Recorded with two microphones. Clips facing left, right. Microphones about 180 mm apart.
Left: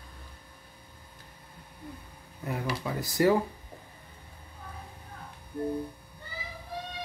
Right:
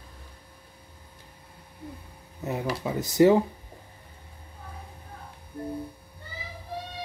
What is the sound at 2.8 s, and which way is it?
Speech, 20° right (ahead or behind).